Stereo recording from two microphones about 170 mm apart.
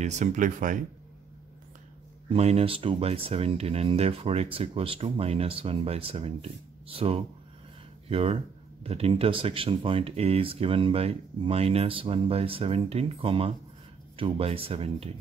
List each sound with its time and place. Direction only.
0.0 s speech: 40° right (ahead or behind)
2.2 s speech: 35° right (ahead or behind)